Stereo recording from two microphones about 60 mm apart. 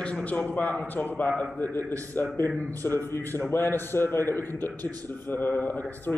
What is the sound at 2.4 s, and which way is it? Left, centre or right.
A man's voice, left.